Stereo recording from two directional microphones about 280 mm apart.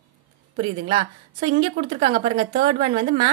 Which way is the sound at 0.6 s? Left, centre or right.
Centre.